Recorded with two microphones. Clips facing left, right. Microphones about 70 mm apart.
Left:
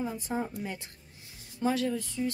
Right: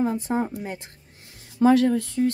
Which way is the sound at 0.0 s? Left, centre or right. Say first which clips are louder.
Right 9 dB; right.